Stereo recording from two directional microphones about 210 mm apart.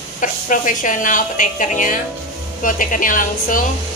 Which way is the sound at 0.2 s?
40° left (ahead or behind).